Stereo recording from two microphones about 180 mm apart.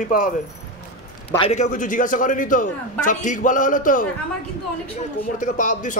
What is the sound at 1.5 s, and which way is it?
A man's voice, 45° left (ahead or behind).